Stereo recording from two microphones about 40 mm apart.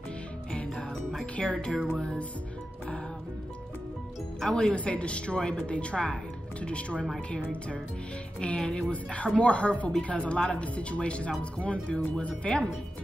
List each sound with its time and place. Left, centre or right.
0.5 s music: centre
1.2 s a woman's voice: left
4.4 s a woman's voice: left
4.7 s a woman's voice: left
8.9 s a woman's voice: left